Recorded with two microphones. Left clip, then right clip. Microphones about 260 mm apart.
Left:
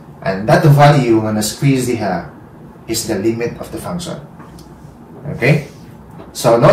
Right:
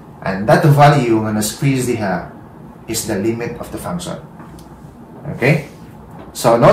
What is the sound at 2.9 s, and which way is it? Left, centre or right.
Speech, centre.